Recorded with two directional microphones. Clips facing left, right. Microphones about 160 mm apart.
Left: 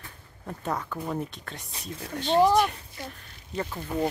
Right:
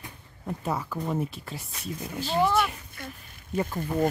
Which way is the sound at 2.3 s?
35° left (ahead or behind).